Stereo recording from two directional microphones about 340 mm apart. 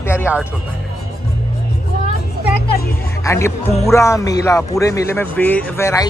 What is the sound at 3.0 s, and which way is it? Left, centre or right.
Speech, centre.